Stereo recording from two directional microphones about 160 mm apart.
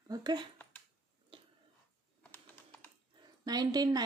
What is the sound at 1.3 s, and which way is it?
Tick-tock, 35° right (ahead or behind).